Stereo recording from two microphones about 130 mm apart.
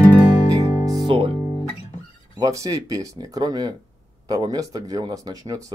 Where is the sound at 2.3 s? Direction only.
25° right (ahead or behind).